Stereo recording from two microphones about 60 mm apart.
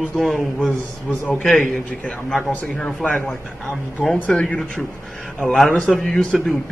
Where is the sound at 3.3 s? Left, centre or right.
Centre.